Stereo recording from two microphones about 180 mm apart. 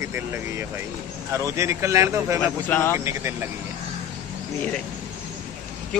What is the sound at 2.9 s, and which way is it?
Speech, 15° right (ahead or behind).